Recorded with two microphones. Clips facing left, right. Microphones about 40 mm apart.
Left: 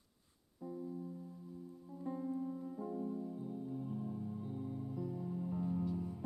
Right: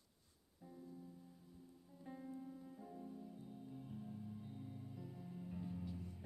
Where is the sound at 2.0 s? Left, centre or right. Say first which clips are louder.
Left 11 dB; centre.